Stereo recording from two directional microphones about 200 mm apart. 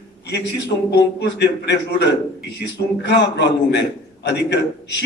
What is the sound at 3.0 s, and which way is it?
A man's voice, 60° left (ahead or behind).